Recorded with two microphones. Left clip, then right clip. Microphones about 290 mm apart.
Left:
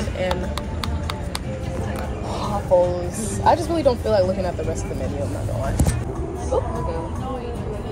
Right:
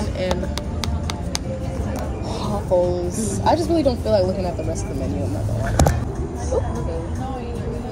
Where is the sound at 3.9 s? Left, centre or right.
Centre.